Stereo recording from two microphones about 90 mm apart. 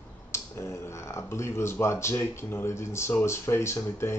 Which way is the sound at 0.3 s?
30° left (ahead or behind).